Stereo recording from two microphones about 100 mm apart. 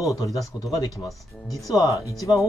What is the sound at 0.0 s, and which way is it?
Speech, 35° left (ahead or behind).